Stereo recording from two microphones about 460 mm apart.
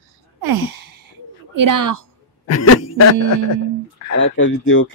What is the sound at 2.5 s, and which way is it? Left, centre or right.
Speech, left.